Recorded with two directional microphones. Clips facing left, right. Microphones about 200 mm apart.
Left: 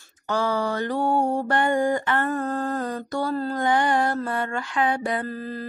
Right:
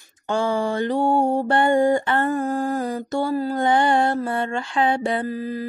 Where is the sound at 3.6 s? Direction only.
30° right (ahead or behind).